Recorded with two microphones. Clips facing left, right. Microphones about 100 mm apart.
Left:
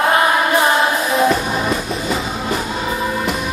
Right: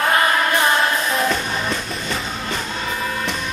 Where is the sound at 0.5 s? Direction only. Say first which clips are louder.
Left 3 dB; 5° left (ahead or behind).